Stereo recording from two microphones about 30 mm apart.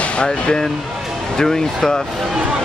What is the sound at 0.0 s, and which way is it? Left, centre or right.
Speech, left.